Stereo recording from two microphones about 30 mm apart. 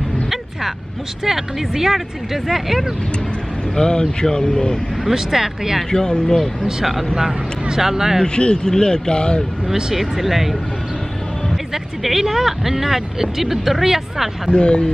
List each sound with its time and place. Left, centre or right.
1.2 s speech: centre
3.7 s speech: left
5.1 s speech: centre
5.9 s speech: left
7.1 s speech: centre
8.6 s speech: left
9.9 s speech: centre
11.7 s speech: centre
14.5 s speech: left